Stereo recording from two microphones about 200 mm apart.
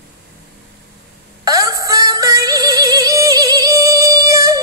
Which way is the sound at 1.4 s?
15° right (ahead or behind).